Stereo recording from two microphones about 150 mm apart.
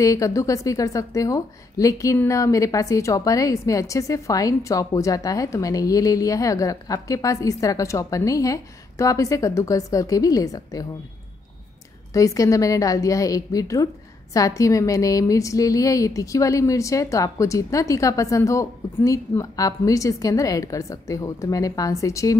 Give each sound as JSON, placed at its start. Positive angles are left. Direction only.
{"t": 0.0, "sound": "a woman's voice", "side_deg": 20}
{"t": 12.1, "sound": "a woman's voice", "side_deg": 20}